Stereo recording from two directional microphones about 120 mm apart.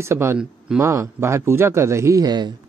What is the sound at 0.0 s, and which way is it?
Speech, 20° right (ahead or behind).